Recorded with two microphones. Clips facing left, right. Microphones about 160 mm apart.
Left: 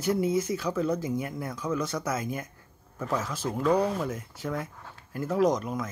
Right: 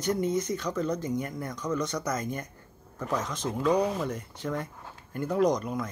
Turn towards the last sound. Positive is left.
turn(degrees=0)  # may be behind; listen again after turning